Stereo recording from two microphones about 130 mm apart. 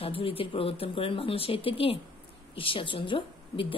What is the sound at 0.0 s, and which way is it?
A woman's voice, 45° left (ahead or behind).